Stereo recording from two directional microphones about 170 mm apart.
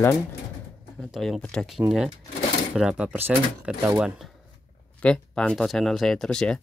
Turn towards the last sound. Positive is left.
turn(degrees=5)  # may be behind; listen again after turning